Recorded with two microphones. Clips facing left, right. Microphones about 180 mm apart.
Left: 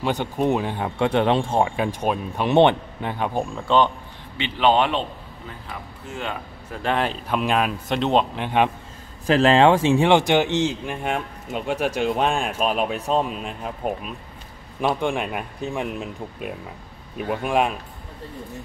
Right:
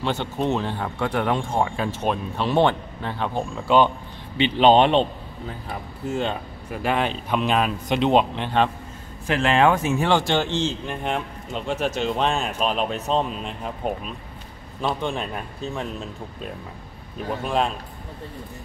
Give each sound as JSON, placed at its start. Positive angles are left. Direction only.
{"t": 0.0, "sound": "speech", "side_deg": 10}
{"t": 1.8, "sound": "speech", "side_deg": 15}
{"t": 3.5, "sound": "speech", "side_deg": -10}
{"t": 4.4, "sound": "speech", "side_deg": -20}
{"t": 6.7, "sound": "speech", "side_deg": -5}
{"t": 8.4, "sound": "speech", "side_deg": 10}
{"t": 9.3, "sound": "speech", "side_deg": 35}